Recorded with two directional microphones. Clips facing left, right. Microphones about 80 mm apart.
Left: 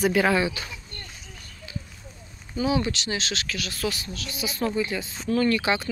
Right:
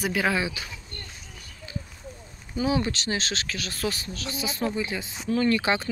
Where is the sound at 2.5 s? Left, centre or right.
Right.